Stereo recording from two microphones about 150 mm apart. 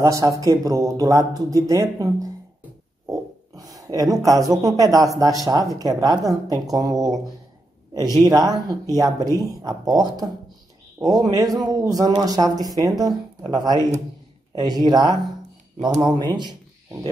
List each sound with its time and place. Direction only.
0.0 s speech: 20° right (ahead or behind)
3.1 s a sound: 25° right (ahead or behind)
5.5 s speech: 20° right (ahead or behind)